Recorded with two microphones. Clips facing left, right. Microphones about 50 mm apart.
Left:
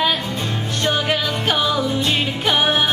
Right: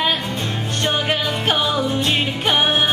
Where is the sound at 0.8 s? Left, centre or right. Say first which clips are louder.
Left 1 dB; centre.